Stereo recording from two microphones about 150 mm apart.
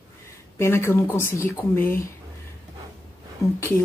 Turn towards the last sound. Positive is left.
turn(degrees=20)  # may be behind; listen again after turning